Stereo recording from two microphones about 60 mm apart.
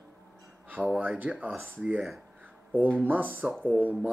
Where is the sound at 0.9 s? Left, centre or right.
Right.